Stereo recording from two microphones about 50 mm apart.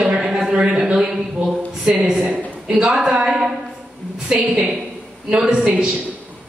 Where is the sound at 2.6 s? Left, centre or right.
Centre.